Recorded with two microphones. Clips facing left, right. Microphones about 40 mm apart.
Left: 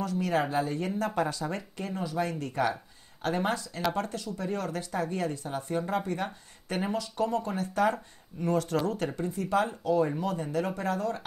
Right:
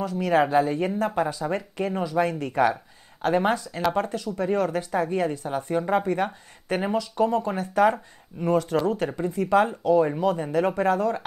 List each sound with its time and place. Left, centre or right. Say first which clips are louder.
0.0 s speech: right 6 dB; right
9.8 s speech: right 4 dB; centre
10.1 s speech: right 7 dB; right